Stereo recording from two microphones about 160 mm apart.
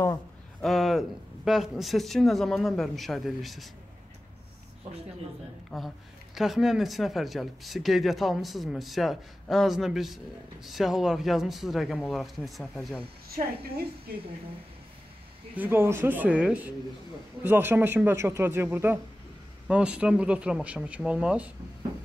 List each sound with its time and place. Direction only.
0.6 s speech: centre (ahead or behind)
5.7 s speech: centre (ahead or behind)
14.1 s a woman's voice: 80° right
15.5 s speech: 10° right (ahead or behind)